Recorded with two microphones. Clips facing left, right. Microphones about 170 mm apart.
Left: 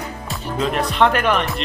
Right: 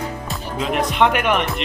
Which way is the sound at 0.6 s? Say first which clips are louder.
Even; 15° right (ahead or behind).